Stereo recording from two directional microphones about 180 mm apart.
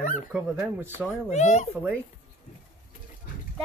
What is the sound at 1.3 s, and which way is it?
Speech, 40° left (ahead or behind).